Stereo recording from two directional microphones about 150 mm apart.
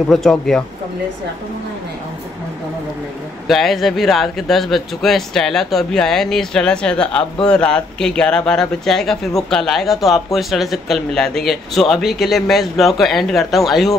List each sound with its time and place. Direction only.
0.1 s speech: centre (ahead or behind)
3.4 s speech: centre (ahead or behind)